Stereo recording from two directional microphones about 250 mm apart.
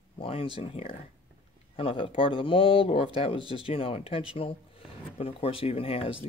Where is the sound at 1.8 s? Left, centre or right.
Left.